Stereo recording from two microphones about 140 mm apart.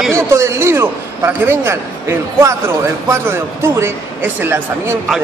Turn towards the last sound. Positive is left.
turn(degrees=-15)  # may be behind; listen again after turning